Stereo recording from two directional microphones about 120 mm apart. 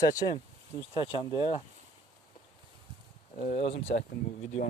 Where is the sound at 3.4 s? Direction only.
60° left (ahead or behind).